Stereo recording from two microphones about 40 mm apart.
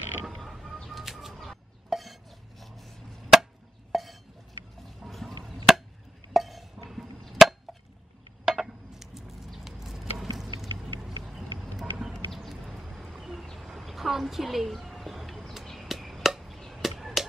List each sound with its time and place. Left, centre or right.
0.3 s creak: centre
0.8 s bird: centre
2.6 s vehicle: centre
3.3 s chop: centre
3.9 s a sound: centre
4.8 s chop: centre
6.3 s a sound: centre
16.5 s chop: centre